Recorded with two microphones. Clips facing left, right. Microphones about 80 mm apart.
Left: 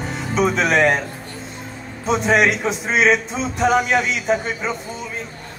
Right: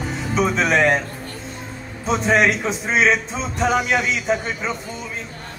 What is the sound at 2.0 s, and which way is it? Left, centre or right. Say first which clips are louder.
Speech: left 1 dB; centre.